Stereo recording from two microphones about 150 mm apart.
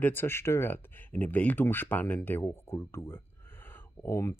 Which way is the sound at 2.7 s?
15° left (ahead or behind).